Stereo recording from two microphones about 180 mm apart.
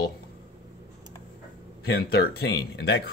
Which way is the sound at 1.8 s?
60° left (ahead or behind).